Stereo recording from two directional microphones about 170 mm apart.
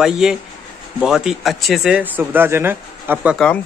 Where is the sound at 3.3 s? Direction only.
5° left (ahead or behind).